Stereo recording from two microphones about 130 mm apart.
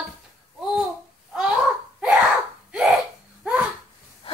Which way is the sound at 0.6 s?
5° right (ahead or behind).